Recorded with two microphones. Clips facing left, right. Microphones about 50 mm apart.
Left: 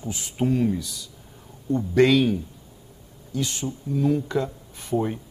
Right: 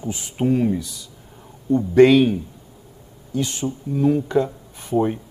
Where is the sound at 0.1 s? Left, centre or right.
Centre.